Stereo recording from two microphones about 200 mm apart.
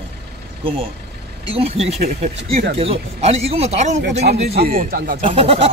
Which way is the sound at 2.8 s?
30° right (ahead or behind).